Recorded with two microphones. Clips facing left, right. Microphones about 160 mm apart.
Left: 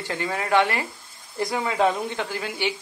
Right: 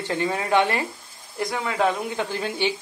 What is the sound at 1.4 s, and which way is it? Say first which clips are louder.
Speech: left 1 dB; centre (ahead or behind).